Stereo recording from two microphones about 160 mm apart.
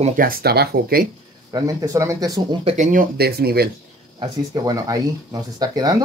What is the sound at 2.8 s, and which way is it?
Speech, 55° right (ahead or behind).